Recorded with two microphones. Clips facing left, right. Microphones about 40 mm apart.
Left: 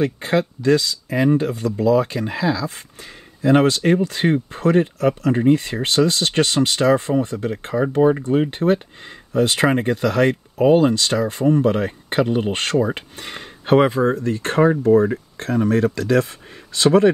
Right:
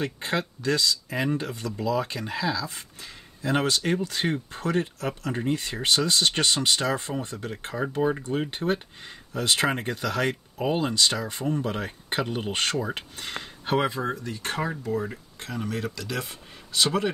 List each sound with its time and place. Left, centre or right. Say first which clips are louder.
0.0 s speech: left 9 dB; left
7.7 s speech: left 9 dB; centre
9.3 s speech: left 8 dB; left
10.7 s speech: left 12 dB; centre
11.4 s speech: left 12 dB; left
14.0 s speech: left 10 dB; left